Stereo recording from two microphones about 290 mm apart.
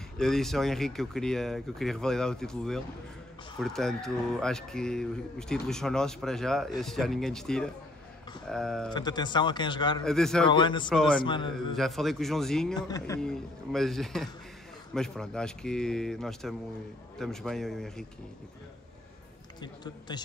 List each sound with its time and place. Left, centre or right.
0.2 s speech: centre
8.9 s a man's voice: centre
10.0 s speech: centre
10.4 s a man's voice: centre
10.9 s speech: centre
11.2 s a man's voice: centre
11.7 s speech: centre
12.7 s speech: centre
19.6 s a man's voice: centre